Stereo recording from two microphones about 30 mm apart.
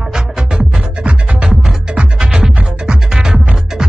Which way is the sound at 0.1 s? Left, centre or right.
Right.